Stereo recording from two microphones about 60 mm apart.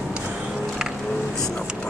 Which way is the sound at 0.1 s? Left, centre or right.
Centre.